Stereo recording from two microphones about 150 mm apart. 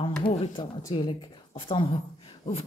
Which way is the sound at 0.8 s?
30° left (ahead or behind).